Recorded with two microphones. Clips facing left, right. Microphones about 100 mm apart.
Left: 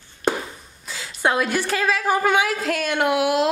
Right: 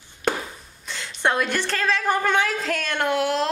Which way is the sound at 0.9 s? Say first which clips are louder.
Left 1 dB; 5° left (ahead or behind).